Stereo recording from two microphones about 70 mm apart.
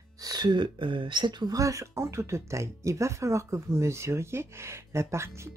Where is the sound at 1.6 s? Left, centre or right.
Right.